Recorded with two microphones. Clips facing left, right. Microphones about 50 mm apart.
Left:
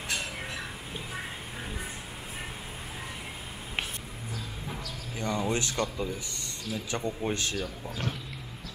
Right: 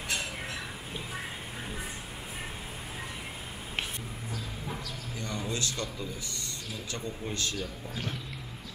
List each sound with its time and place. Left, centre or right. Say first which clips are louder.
5.2 s a man's voice: left 5 dB; left